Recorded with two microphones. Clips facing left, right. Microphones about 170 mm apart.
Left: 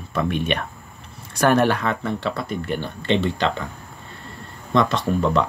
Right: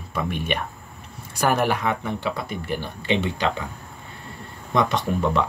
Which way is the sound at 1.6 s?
10° right (ahead or behind).